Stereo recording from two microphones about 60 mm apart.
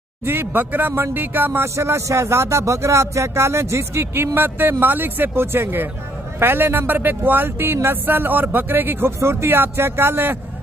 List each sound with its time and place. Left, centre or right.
0.2 s speech: right